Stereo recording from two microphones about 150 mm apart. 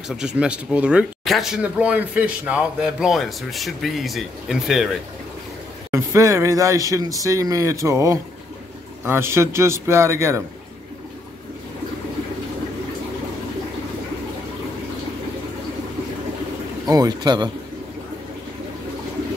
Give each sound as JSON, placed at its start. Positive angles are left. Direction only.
{"t": 0.1, "sound": "speech", "side_deg": -5}
{"t": 5.9, "sound": "a man's voice", "side_deg": -20}
{"t": 16.8, "sound": "speech", "side_deg": -25}